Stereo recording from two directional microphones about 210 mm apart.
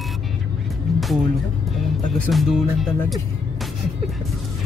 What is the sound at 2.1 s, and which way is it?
A woman's voice, centre (ahead or behind).